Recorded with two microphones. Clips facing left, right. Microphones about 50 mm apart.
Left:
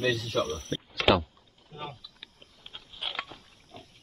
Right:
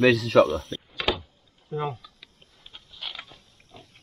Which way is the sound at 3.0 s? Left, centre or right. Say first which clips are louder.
Left 1 dB; left.